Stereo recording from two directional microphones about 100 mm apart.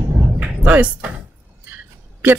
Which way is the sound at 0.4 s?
15° right (ahead or behind).